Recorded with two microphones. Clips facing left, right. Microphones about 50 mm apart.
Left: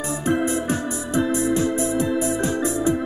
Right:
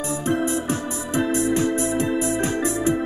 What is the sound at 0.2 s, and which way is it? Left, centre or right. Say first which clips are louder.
Organ: left 2 dB; centre.